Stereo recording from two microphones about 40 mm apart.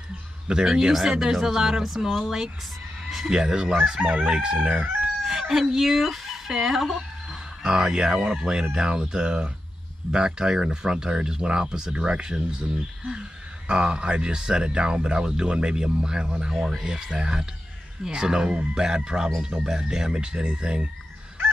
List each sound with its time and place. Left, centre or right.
0.7 s speech: centre
4.6 s crowing: right
5.2 s speech: centre
7.6 s speech: centre